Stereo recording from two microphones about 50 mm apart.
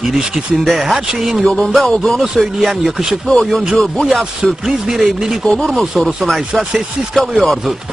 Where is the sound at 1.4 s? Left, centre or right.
Centre.